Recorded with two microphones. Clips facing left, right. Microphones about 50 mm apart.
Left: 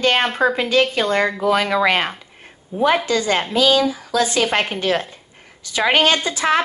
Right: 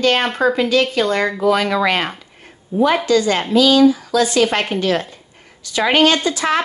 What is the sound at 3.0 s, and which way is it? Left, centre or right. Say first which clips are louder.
Speech: right 3 dB; left.